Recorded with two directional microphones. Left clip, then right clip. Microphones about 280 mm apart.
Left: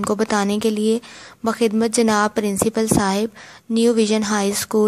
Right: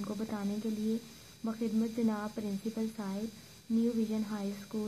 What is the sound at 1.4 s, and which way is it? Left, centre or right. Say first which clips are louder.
Speech: left 17 dB; left.